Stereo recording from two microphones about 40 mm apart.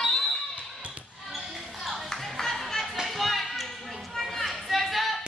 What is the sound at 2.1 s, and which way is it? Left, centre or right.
Music, centre.